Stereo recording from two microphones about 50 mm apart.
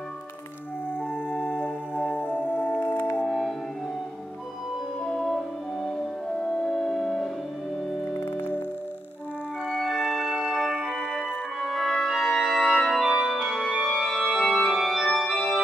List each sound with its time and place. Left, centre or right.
1.3 s organ: left
2.8 s music: left
3.3 s music: centre
5.0 s music: centre
9.7 s music: centre
11.6 s music: centre
12.5 s organ: centre
13.5 s music: centre
14.0 s organ: centre